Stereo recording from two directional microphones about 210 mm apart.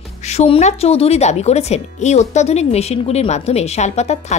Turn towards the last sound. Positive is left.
turn(degrees=30)  # may be behind; listen again after turning